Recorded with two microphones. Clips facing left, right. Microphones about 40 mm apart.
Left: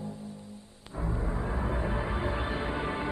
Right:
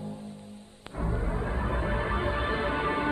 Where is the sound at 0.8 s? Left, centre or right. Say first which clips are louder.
Right 2 dB; right.